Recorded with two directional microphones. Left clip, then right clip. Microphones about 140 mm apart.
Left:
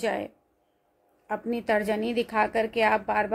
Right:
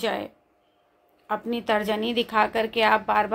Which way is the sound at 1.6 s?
20° left (ahead or behind).